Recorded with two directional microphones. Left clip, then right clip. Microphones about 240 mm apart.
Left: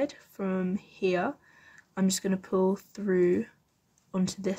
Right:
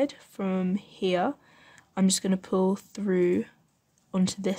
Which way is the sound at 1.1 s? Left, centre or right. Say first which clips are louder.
Right 3 dB; centre.